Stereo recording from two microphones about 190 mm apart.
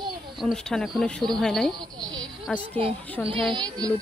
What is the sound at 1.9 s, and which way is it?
Speech, 20° right (ahead or behind).